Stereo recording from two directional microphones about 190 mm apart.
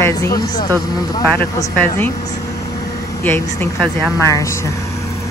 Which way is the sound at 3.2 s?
10° left (ahead or behind).